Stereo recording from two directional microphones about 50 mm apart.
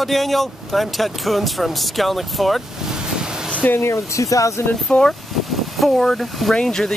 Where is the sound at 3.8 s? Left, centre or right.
Left.